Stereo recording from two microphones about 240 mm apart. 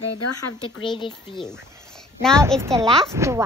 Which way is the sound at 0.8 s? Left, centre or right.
Centre.